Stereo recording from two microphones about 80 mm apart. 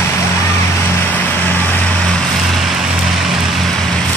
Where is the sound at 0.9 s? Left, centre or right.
Left.